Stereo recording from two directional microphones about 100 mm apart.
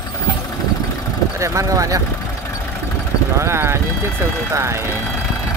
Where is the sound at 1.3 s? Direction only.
30° right (ahead or behind).